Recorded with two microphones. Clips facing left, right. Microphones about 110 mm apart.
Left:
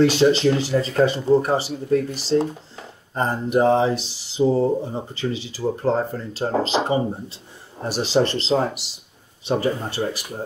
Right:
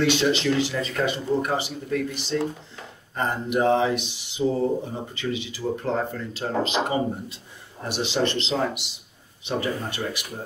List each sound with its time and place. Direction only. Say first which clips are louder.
0.0 s speech: left 6 dB; 35° left (ahead or behind)